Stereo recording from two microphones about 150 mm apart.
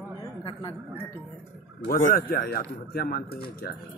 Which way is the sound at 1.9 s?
85° left.